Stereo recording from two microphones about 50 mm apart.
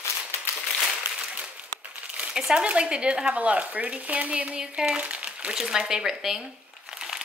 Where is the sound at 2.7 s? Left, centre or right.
Centre.